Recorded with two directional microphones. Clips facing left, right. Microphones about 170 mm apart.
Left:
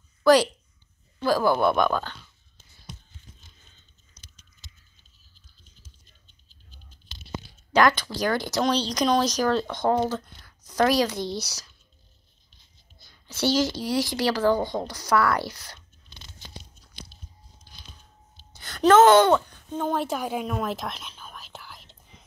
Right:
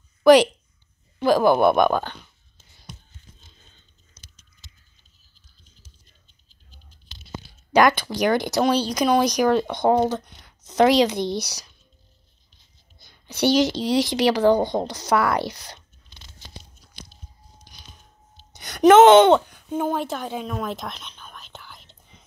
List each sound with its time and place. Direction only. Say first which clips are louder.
0.2 s speech: right 5 dB; 20° right (ahead or behind)
7.7 s speech: right 3 dB; 15° right (ahead or behind)
13.0 s speech: right 4 dB; 15° right (ahead or behind)
17.7 s a sound: left 1 dB; 15° right (ahead or behind)
19.8 s speech: right 2 dB; centre (ahead or behind)
20.1 s whispering: left 1 dB; 10° left (ahead or behind)